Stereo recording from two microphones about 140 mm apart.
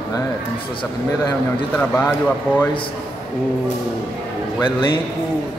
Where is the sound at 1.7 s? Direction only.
10° left (ahead or behind).